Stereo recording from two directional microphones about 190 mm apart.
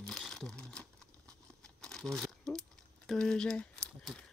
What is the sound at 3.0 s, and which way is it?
Speech, 5° left (ahead or behind).